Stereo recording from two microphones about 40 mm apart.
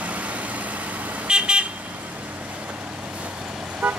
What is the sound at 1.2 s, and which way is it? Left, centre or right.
Vehicle, right.